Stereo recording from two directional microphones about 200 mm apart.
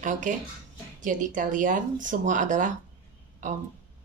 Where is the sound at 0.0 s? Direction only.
40° right (ahead or behind).